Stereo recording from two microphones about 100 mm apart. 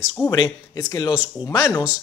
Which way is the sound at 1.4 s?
35° left (ahead or behind).